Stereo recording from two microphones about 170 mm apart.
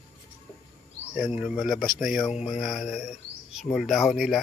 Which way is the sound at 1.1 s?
5° right (ahead or behind).